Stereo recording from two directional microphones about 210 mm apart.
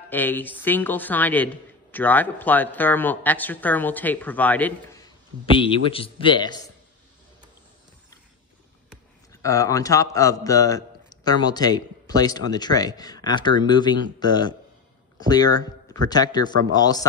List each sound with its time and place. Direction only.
0.1 s a man's voice: 10° left (ahead or behind)
5.6 s a man's voice: 25° left (ahead or behind)
9.3 s a man's voice: 15° left (ahead or behind)